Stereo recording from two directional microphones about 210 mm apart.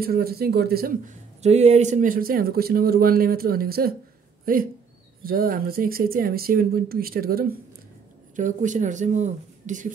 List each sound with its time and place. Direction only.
0.0 s speech: 45° right (ahead or behind)